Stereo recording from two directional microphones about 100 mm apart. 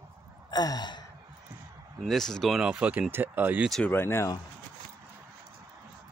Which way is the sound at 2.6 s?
10° right (ahead or behind).